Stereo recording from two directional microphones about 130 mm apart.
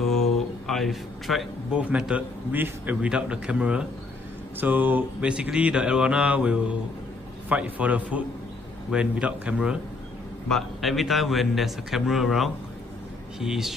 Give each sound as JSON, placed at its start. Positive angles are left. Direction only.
{"t": 0.0, "sound": "a man's voice", "side_deg": 5}